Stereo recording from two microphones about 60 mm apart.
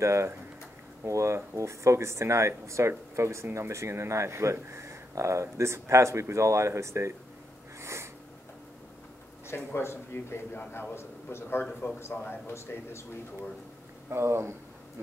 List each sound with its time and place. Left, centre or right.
0.0 s speech: right
7.8 s a sound: right
9.5 s a man's voice: left
14.1 s speech: right